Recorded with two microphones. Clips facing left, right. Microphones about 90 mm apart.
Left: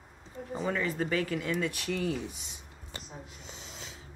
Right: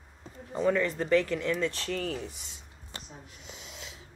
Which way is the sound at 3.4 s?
35° left (ahead or behind).